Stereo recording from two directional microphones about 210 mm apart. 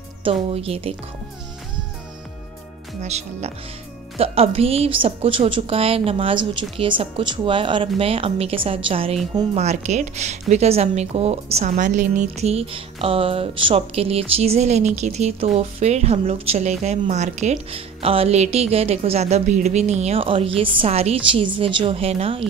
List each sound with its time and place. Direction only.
0.2 s a woman's voice: 25° right (ahead or behind)
3.0 s a woman's voice: 30° right (ahead or behind)